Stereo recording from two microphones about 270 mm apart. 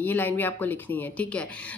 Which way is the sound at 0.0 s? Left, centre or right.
Centre.